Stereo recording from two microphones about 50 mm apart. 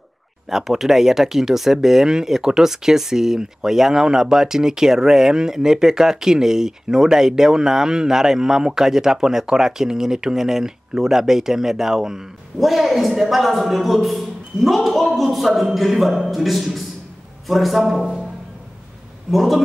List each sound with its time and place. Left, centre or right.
0.5 s a man's voice: centre
19.3 s a man's voice: centre